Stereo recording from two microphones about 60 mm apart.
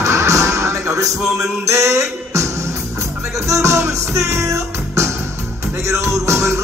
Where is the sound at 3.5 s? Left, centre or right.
Right.